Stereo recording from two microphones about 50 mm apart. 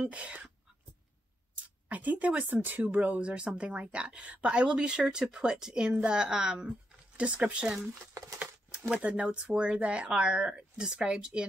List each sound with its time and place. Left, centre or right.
0.1 s speech: right
1.6 s speech: right
8.9 s speech: right